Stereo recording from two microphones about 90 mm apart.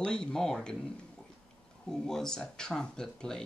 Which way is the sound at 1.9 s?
5° left (ahead or behind).